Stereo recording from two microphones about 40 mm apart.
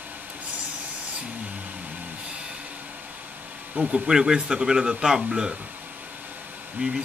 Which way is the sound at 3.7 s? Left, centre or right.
Right.